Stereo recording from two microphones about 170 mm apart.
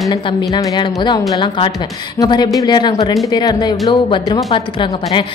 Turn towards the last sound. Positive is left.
turn(degrees=30)  # may be behind; listen again after turning